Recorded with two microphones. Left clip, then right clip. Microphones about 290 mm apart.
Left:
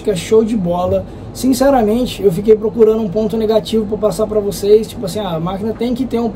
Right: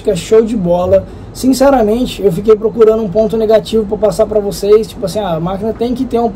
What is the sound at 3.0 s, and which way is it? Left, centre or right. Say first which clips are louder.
Speech: right 5 dB; left.